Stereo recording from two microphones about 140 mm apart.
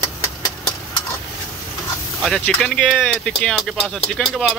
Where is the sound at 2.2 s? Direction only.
5° left (ahead or behind).